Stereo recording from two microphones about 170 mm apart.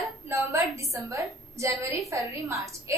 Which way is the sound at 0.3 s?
15° right (ahead or behind).